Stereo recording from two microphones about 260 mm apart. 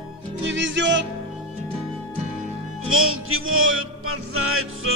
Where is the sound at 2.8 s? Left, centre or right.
Right.